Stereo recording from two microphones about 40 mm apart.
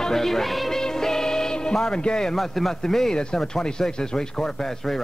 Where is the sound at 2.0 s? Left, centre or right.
Centre.